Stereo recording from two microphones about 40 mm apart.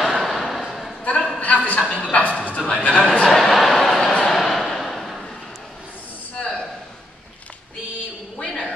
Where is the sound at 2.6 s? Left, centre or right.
Left.